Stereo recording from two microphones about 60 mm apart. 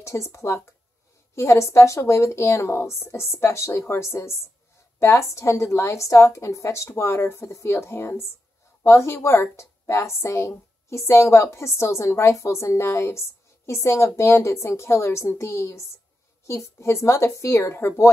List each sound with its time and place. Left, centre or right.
0.0 s a woman's voice: left